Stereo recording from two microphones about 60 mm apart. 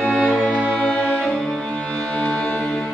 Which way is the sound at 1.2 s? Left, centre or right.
Centre.